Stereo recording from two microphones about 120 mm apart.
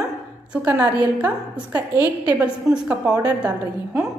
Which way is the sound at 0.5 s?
10° right (ahead or behind).